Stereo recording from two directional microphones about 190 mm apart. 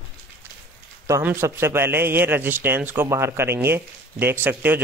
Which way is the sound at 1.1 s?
15° right (ahead or behind).